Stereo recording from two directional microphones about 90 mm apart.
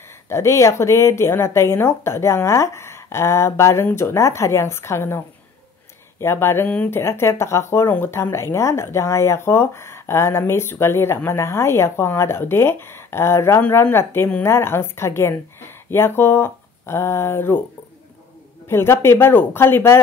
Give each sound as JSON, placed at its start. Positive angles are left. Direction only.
{"t": 0.3, "sound": "speech", "side_deg": 30}
{"t": 18.7, "sound": "speech", "side_deg": 25}